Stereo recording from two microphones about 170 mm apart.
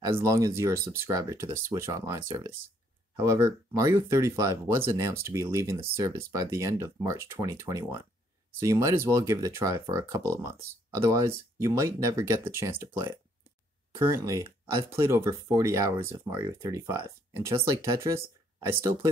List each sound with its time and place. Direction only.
0.0 s speech: 15° right (ahead or behind)